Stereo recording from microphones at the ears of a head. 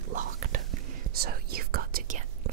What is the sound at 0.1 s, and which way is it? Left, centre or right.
Whispering, right.